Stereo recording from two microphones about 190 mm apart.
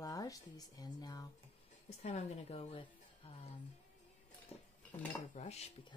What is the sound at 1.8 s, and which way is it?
A woman's voice, 35° left (ahead or behind).